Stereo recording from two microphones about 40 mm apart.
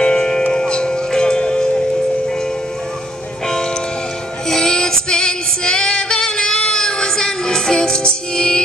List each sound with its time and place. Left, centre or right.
0.0 s music: centre
4.5 s female singing: centre